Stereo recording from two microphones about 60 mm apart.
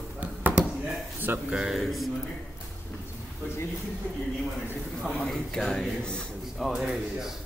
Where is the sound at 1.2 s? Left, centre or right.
Right.